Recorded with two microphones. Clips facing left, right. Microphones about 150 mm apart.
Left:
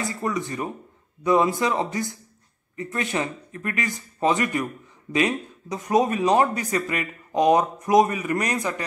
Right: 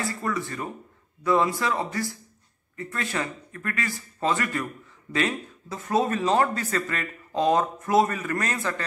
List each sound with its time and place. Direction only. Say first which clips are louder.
0.0 s a man's voice: left 2 dB; 20° left (ahead or behind)